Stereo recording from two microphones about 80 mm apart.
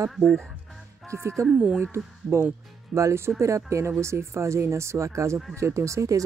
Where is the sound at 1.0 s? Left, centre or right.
Right.